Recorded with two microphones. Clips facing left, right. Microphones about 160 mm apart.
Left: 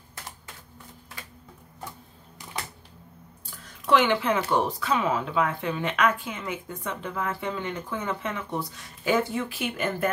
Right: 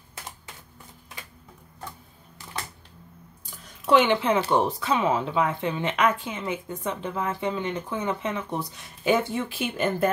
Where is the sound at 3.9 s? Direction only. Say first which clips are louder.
Right 2 dB; 25° right (ahead or behind).